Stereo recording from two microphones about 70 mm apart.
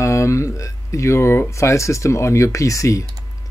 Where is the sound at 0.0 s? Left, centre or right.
Left.